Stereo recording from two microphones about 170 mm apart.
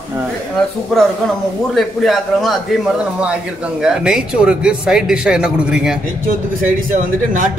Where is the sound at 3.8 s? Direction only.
5° right (ahead or behind).